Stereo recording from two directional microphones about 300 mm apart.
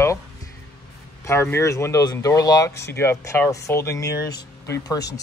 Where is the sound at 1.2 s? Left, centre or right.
Centre.